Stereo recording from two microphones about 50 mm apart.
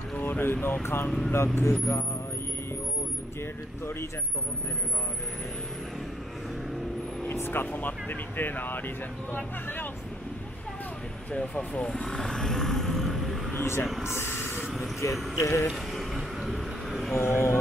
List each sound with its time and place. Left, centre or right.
0.2 s speech: left
1.3 s speech: left
7.3 s speech: left
11.3 s speech: left; by 13.4 s centre
13.6 s speech: left
15.3 s speech: left
15.7 s vehicle: centre
17.2 s speech: left